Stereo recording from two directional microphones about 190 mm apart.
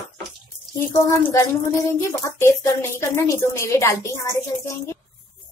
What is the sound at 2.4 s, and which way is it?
A woman's voice, 15° left (ahead or behind).